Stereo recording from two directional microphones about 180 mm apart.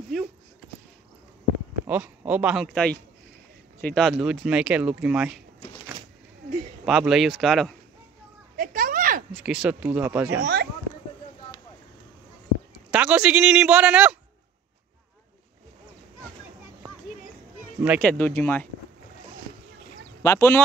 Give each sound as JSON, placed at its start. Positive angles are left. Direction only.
{"t": 0.1, "sound": "speech", "side_deg": 0}
{"t": 1.9, "sound": "speech", "side_deg": -10}
{"t": 6.9, "sound": "speech", "side_deg": -5}
{"t": 8.5, "sound": "children playing", "side_deg": -50}
{"t": 9.3, "sound": "a man's voice", "side_deg": -5}
{"t": 10.4, "sound": "a sound", "side_deg": -65}
{"t": 12.9, "sound": "a man's voice", "side_deg": -5}
{"t": 17.7, "sound": "speech", "side_deg": -10}
{"t": 18.0, "sound": "speech", "side_deg": 10}
{"t": 20.2, "sound": "speech", "side_deg": 15}